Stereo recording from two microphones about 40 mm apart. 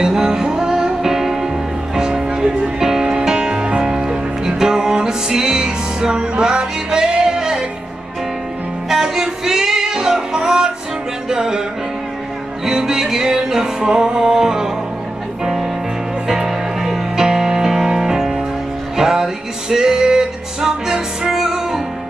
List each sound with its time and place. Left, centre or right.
0.0 s music: centre
8.8 s music: centre
12.6 s music: centre